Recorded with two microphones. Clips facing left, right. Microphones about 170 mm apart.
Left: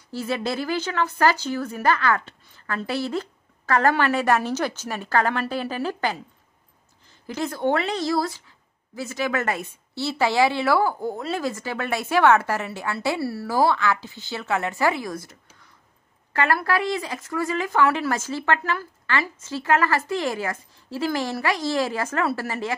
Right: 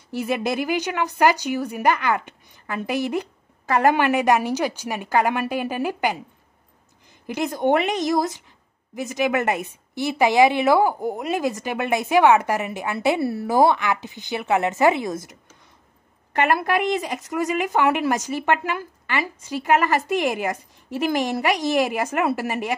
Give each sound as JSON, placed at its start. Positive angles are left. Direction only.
{"t": 0.1, "sound": "a woman's voice", "side_deg": -15}
{"t": 7.2, "sound": "a woman's voice", "side_deg": -15}
{"t": 16.3, "sound": "a woman's voice", "side_deg": -20}